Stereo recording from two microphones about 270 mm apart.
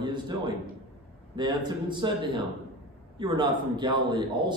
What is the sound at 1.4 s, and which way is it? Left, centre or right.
A man's voice, centre.